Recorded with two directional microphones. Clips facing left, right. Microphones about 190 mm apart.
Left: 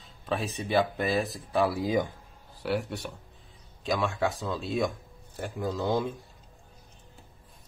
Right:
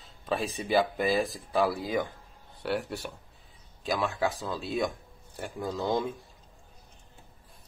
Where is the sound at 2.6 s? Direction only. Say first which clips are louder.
Left 1 dB; centre (ahead or behind).